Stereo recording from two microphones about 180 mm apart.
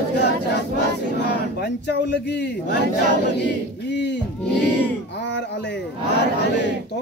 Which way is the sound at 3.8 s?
70° left (ahead or behind).